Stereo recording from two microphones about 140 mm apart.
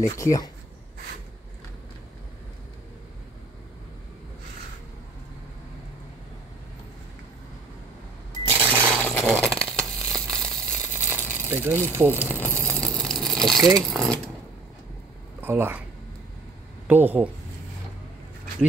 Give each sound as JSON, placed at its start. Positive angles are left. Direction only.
{"t": 0.0, "sound": "speech", "side_deg": 25}
{"t": 8.8, "sound": "a sound", "side_deg": 10}
{"t": 10.9, "sound": "a sound", "side_deg": 15}
{"t": 11.4, "sound": "speech", "side_deg": -15}
{"t": 12.1, "sound": "a sound", "side_deg": 15}
{"t": 13.6, "sound": "speech", "side_deg": -25}
{"t": 13.8, "sound": "speech", "side_deg": 5}
{"t": 15.4, "sound": "speech", "side_deg": -15}
{"t": 16.8, "sound": "speech", "side_deg": -15}